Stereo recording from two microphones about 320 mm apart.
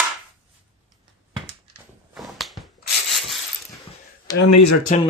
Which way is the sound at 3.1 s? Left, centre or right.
Centre.